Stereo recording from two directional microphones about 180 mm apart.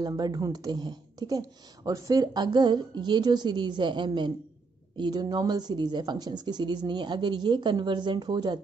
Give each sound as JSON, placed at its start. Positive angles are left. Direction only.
{"t": 0.0, "sound": "a woman's voice", "side_deg": -20}